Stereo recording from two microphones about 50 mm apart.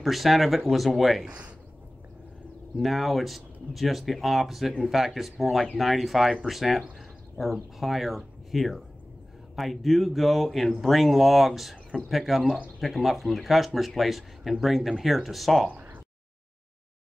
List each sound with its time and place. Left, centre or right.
0.0 s speech: centre
2.8 s speech: centre
15.7 s a sound: right